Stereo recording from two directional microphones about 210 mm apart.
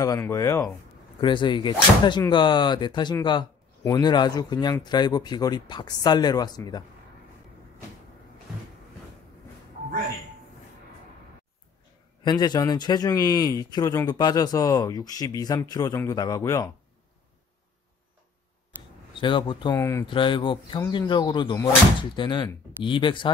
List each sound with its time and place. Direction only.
0.0 s a man's voice: 15° left (ahead or behind)
12.2 s a man's voice: 20° left (ahead or behind)
19.2 s speech: 25° left (ahead or behind)
20.2 s speech: 25° left (ahead or behind)